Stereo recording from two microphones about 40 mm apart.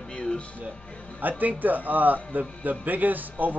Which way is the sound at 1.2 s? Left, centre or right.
Right.